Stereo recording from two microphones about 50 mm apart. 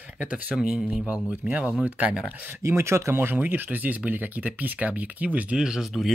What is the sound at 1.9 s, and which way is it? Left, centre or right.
Speech, right.